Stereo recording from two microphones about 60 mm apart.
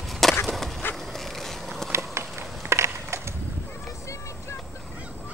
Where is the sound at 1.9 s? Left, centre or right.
Right.